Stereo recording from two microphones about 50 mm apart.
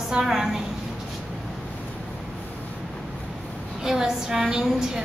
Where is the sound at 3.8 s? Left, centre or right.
Centre.